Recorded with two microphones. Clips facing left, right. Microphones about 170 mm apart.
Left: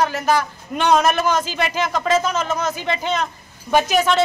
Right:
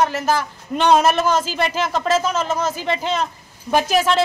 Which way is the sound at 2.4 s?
30° right (ahead or behind).